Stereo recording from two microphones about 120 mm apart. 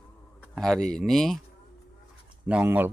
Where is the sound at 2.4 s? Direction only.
15° right (ahead or behind).